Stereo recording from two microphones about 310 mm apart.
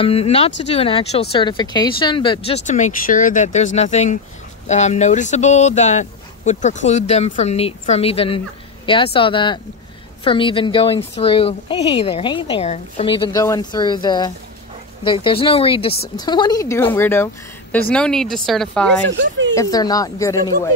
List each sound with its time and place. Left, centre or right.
0.0 s a woman's voice: centre
19.1 s speech: right
19.5 s a woman's voice: centre